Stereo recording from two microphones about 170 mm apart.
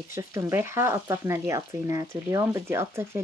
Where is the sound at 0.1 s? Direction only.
15° right (ahead or behind).